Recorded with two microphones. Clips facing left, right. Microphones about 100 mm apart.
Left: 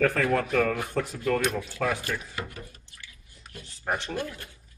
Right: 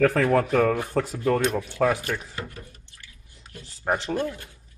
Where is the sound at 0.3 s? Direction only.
30° right (ahead or behind).